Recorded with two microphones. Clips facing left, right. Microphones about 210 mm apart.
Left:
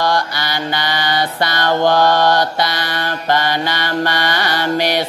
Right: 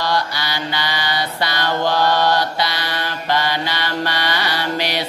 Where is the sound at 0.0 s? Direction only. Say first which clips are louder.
Left 3 dB; 50° left (ahead or behind).